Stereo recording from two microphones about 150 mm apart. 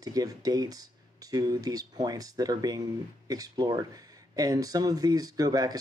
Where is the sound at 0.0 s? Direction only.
25° right (ahead or behind).